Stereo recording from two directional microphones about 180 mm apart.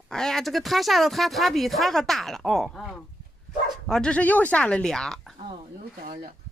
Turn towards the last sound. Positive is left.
turn(degrees=5)  # may be behind; listen again after turning